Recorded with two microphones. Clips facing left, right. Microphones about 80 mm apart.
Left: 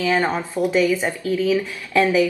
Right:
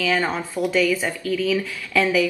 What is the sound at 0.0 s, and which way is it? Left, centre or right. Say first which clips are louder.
A woman's voice: left 2 dB; centre.